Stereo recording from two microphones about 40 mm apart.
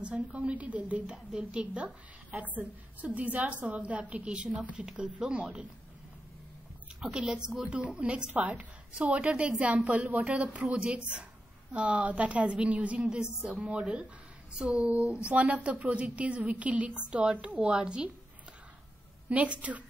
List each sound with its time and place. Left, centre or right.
0.0 s a woman's voice: right
7.0 s a woman's voice: centre
7.6 s a woman's voice: right
13.1 s speech: centre
13.5 s speech: right
14.5 s speech: centre
15.0 s a woman's voice: right
19.2 s a woman's voice: right